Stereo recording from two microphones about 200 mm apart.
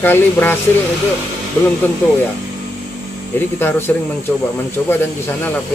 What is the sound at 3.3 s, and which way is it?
Speech, 10° left (ahead or behind).